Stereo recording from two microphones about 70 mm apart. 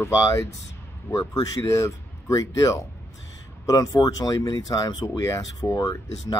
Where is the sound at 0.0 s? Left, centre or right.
Left.